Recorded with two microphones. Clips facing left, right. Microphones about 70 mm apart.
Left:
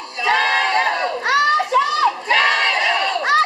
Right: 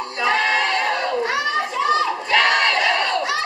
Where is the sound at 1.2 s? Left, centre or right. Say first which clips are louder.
Left 5 dB; left.